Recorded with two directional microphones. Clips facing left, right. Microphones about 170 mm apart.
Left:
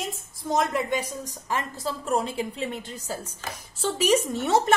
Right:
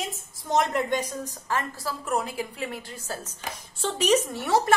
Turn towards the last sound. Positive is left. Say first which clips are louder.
# left 1 dB
turn(degrees=20)  # may be behind; listen again after turning